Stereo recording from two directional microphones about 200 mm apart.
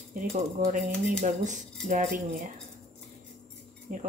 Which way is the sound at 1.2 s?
35° right (ahead or behind).